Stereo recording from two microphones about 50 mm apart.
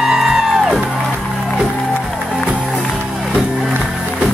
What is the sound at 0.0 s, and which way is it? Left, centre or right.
Music, centre.